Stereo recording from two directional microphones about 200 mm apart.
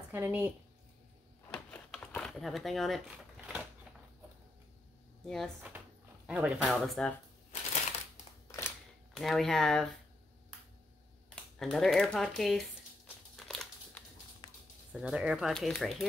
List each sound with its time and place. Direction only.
0.1 s a woman's voice: 10° right (ahead or behind)
1.5 s a sound: 5° left (ahead or behind)
5.2 s speech: centre (ahead or behind)
8.5 s a sound: 15° left (ahead or behind)
9.1 s speech: centre (ahead or behind)
11.2 s speech: centre (ahead or behind)
13.4 s crumpling: 5° left (ahead or behind)
14.4 s a sound: 20° left (ahead or behind)
14.9 s speech: 5° right (ahead or behind)